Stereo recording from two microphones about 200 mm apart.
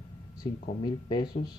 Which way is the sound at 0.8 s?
20° left (ahead or behind).